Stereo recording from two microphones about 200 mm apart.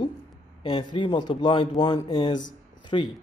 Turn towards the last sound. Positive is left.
turn(degrees=25)  # may be behind; listen again after turning